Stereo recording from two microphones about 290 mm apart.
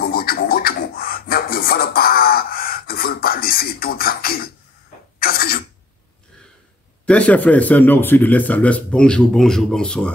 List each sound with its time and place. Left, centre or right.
0.0 s scratching: left
5.2 s throat clearing: left
7.1 s speech: centre